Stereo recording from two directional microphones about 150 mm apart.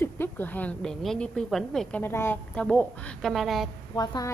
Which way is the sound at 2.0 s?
15° left (ahead or behind).